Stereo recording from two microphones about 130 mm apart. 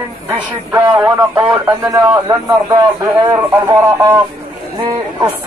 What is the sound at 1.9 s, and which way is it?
Speech, 25° right (ahead or behind).